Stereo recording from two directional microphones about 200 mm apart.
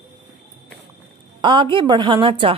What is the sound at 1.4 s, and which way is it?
Speech, 25° right (ahead or behind).